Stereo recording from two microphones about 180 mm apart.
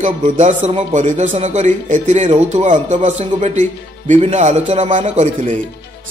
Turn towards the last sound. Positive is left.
turn(degrees=-40)  # may be behind; listen again after turning